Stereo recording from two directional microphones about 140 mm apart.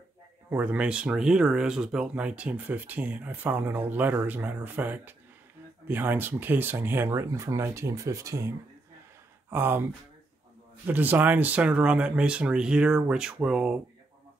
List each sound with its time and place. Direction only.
0.5 s speech: 10° right (ahead or behind)
10.9 s speech: 15° right (ahead or behind)